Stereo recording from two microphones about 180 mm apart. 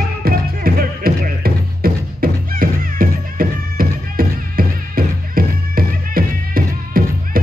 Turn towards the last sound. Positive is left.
turn(degrees=-55)  # may be behind; listen again after turning